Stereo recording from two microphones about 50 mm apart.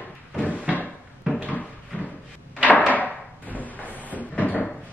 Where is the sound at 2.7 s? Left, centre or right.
Left.